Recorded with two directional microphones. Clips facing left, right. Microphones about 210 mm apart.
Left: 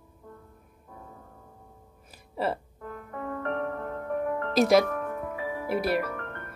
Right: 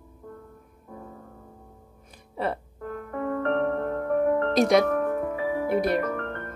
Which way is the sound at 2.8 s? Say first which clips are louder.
Right 10 dB; 50° right (ahead or behind).